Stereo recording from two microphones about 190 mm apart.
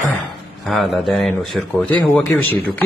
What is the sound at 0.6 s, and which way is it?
A man's voice, centre (ahead or behind).